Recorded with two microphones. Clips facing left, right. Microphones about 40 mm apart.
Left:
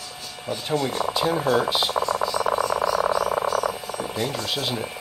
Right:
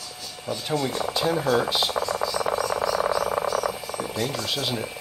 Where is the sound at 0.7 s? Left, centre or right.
Centre.